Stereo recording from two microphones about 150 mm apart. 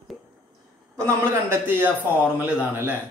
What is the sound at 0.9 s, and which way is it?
Speech, 15° right (ahead or behind).